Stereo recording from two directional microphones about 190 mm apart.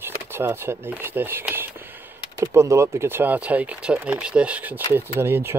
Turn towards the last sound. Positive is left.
turn(degrees=-10)  # may be behind; listen again after turning